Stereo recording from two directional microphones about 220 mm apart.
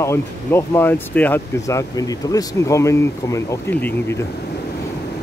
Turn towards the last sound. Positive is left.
turn(degrees=10)  # may be behind; listen again after turning